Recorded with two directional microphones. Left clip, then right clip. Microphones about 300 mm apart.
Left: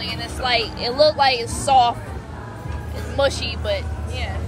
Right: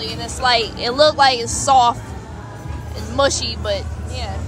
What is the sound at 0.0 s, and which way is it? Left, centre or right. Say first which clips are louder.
Speech: right 5 dB; centre.